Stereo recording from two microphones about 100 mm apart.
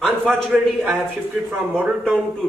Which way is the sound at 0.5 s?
15° right (ahead or behind).